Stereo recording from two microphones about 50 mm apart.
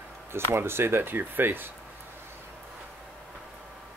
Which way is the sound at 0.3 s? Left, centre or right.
Right.